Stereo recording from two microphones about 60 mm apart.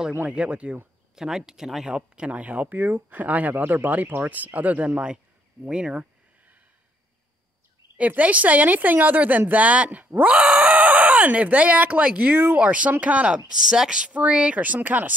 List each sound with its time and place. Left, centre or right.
0.3 s speech: centre
1.1 s speech: centre
1.9 s speech: centre
5.7 s a sound: centre
8.0 s speech: right
12.3 s speech: right
12.5 s speech: right
13.5 s speech: centre; by 15.1 s right